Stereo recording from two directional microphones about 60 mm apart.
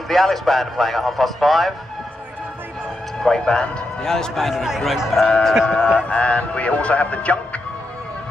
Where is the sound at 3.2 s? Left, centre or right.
Centre.